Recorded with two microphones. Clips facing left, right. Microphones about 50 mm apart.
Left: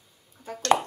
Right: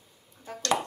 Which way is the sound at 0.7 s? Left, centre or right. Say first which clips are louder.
Left 6 dB; left.